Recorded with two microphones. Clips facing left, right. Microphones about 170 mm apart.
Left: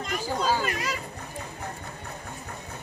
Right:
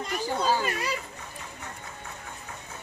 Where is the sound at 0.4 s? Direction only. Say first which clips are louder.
Even; 15° right (ahead or behind).